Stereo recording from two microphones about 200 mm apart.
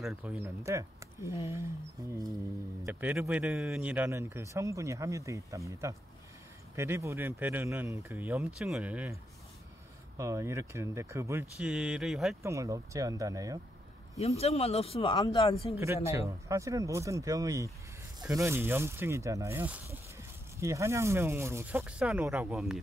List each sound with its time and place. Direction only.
0.0 s speech: 5° right (ahead or behind)
2.0 s a sound: 20° right (ahead or behind)
2.8 s speech: 10° right (ahead or behind)
11.5 s speech: 5° right (ahead or behind)
12.4 s speech: 15° right (ahead or behind)
14.2 s speech: 30° left (ahead or behind)
16.1 s speech: 15° right (ahead or behind)